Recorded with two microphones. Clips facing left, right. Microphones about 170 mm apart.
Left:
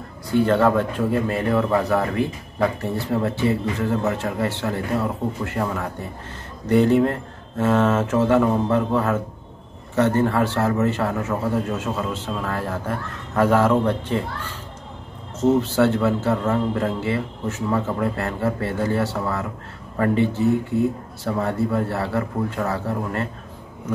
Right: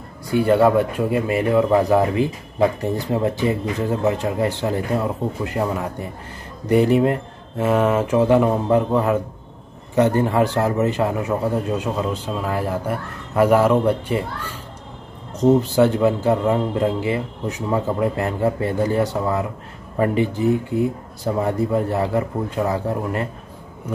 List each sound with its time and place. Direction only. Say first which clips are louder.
0.3 s a man's voice: right 2 dB; 10° right (ahead or behind)
15.3 s a man's voice: right 3 dB; 15° right (ahead or behind)